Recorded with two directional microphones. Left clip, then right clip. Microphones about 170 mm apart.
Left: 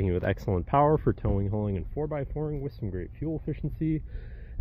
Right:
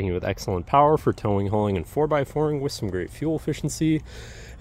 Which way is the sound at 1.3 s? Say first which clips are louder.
Right 9 dB; 30° right (ahead or behind).